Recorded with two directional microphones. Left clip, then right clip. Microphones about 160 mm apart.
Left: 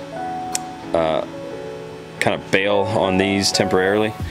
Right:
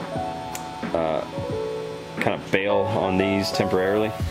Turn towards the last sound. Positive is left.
turn(degrees=25)  # may be behind; listen again after turning